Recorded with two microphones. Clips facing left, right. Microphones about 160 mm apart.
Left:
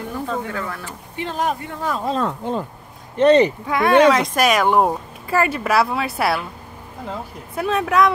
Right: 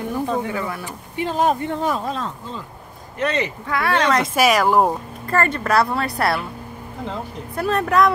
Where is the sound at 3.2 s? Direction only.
35° left (ahead or behind).